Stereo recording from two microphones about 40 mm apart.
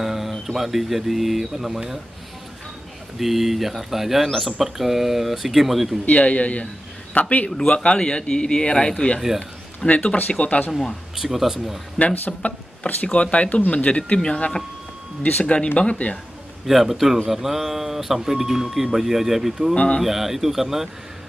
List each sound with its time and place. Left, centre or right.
0.0 s speech: centre
3.2 s speech: centre
6.0 s speech: left
7.4 s speech: left
10.7 s speech: centre
11.1 s speech: centre
12.3 s speech: left
15.4 s speech: left
16.6 s speech: centre
19.7 s speech: left
20.0 s speech: centre